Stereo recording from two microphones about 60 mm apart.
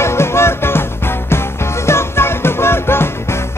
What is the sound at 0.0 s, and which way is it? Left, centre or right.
Music, left.